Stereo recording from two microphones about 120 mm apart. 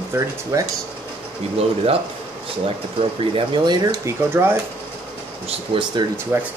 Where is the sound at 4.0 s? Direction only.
20° right (ahead or behind).